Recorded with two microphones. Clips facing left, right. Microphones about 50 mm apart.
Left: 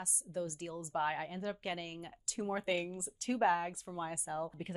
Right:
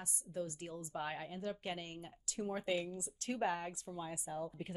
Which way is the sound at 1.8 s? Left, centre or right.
Left.